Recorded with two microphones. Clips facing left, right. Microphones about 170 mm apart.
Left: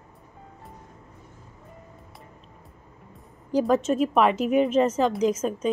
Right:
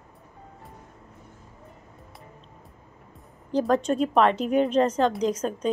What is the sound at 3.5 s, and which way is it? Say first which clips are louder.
A woman's voice: left 1 dB; 5° left (ahead or behind).